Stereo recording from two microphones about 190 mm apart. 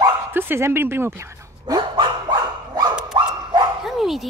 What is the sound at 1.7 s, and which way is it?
Dog, 25° right (ahead or behind).